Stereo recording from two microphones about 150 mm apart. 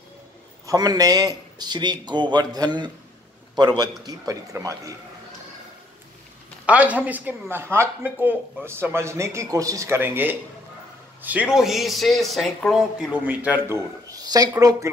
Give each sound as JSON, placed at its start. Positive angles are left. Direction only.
{"t": 0.7, "sound": "a man's voice", "side_deg": -25}
{"t": 6.6, "sound": "a man's voice", "side_deg": -10}